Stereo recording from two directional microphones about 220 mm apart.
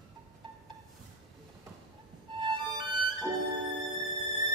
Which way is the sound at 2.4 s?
20° right (ahead or behind).